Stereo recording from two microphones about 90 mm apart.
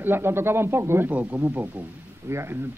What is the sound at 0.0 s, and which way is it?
Speech, 25° right (ahead or behind).